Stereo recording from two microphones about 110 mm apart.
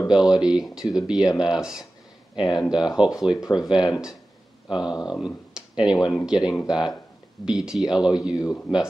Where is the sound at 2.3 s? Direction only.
40° left (ahead or behind).